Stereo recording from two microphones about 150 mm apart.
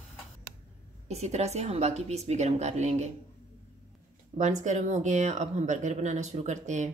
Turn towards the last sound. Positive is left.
turn(degrees=-50)  # may be behind; listen again after turning